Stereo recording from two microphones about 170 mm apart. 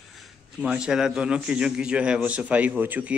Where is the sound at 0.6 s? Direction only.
5° right (ahead or behind).